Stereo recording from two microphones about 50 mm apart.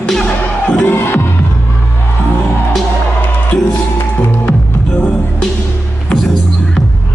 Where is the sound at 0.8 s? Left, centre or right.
Left.